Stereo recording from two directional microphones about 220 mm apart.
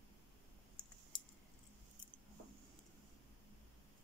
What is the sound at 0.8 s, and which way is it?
Clicking, 20° left (ahead or behind).